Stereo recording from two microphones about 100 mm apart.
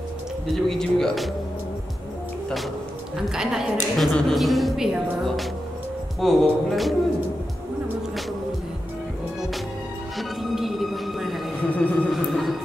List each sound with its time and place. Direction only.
0.5 s a woman's voice: 5° left (ahead or behind)
3.2 s a woman's voice: 5° right (ahead or behind)
10.1 s music: centre (ahead or behind)
11.7 s music: 15° left (ahead or behind)
12.1 s music: centre (ahead or behind)